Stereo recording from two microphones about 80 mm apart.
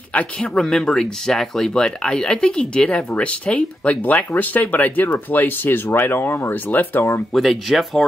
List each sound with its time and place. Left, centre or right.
0.1 s speech: centre
7.3 s speech: centre